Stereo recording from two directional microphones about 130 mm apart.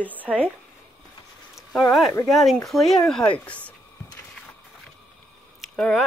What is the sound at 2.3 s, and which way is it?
Speech, centre (ahead or behind).